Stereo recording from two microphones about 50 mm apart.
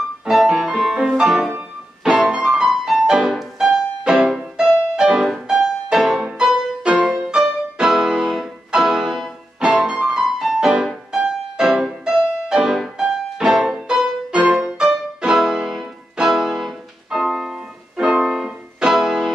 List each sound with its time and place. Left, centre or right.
0.3 s music: centre
2.2 s music: centre